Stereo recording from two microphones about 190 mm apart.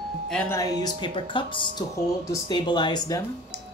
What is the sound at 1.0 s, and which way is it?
Speech, 25° left (ahead or behind).